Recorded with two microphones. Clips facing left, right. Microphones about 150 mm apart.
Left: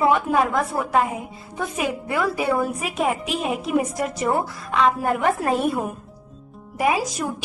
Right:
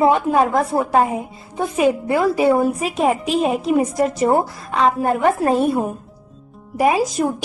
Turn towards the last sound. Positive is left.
turn(degrees=-40)  # may be behind; listen again after turning